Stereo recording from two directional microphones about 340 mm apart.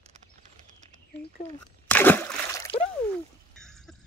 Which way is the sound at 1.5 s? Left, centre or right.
Centre.